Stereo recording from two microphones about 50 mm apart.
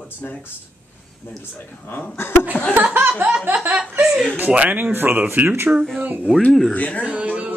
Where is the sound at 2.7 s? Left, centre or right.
Right.